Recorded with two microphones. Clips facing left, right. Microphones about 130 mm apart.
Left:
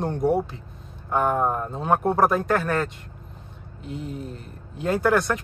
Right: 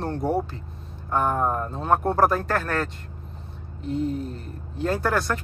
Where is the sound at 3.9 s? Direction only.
10° left (ahead or behind).